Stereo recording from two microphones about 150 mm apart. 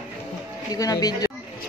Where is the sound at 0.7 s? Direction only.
25° left (ahead or behind).